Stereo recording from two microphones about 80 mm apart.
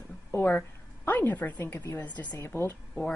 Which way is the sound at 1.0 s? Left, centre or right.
Left.